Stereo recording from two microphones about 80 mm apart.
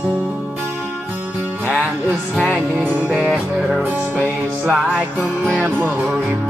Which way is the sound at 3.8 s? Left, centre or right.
Right.